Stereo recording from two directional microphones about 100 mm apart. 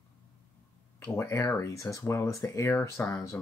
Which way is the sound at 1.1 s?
35° left (ahead or behind).